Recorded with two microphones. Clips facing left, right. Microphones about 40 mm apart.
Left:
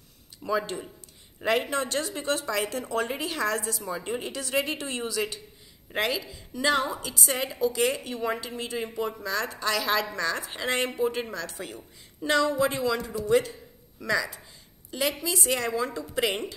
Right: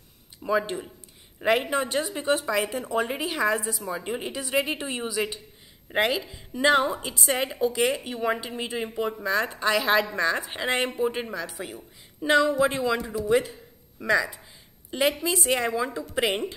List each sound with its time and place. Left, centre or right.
0.4 s a woman's voice: centre